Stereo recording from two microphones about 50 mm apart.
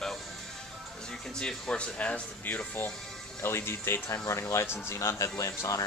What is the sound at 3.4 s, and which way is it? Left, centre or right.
Speech, left.